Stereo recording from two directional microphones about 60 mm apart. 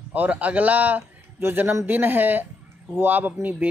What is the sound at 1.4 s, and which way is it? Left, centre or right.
A man's voice, right.